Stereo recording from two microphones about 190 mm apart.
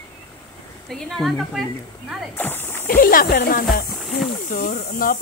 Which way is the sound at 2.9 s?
50° left (ahead or behind).